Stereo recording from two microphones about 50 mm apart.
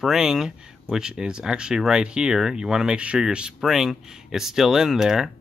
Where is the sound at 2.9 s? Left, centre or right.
Right.